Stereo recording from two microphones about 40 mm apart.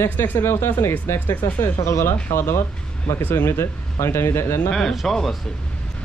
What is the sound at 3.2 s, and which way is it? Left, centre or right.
Speech, left.